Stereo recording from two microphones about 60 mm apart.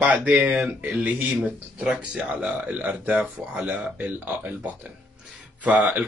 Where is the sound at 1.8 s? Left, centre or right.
Centre.